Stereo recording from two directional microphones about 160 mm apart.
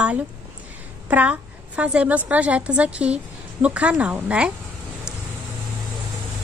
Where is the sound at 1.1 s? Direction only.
10° right (ahead or behind).